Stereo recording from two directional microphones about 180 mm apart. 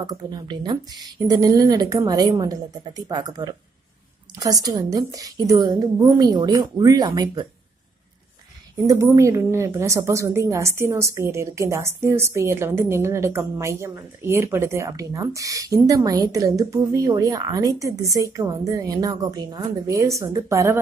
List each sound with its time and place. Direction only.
0.0 s speech: 20° right (ahead or behind)
8.8 s a woman's voice: 15° right (ahead or behind)